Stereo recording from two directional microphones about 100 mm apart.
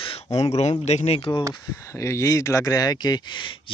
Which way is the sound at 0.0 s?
80° left.